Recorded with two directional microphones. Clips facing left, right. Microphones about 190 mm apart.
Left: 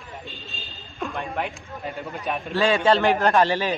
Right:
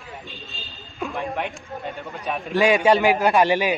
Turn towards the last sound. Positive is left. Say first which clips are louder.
# right 2 dB
turn(degrees=-15)  # may be behind; listen again after turning